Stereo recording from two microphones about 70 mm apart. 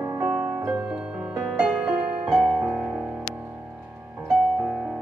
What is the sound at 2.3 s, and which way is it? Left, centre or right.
Music, centre.